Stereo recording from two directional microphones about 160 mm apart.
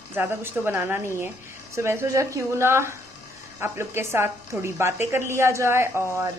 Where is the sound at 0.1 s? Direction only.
15° right (ahead or behind).